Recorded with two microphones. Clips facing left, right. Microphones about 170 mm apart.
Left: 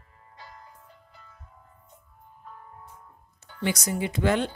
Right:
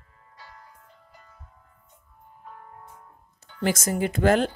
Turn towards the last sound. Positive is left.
turn(degrees=-45)  # may be behind; listen again after turning